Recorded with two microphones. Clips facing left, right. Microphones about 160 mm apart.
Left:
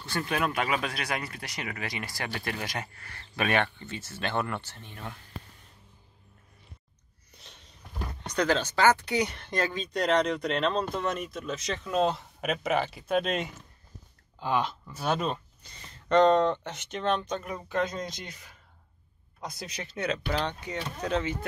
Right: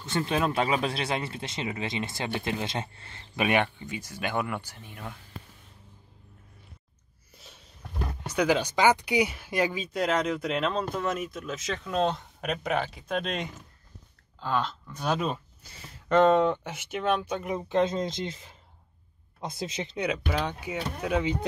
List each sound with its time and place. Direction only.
0.0 s speech: 25° right (ahead or behind); by 5.2 s 5° right (ahead or behind)
7.3 s a sound: 5° right (ahead or behind)
8.2 s speech: 10° right (ahead or behind)
17.5 s speech: 20° right (ahead or behind)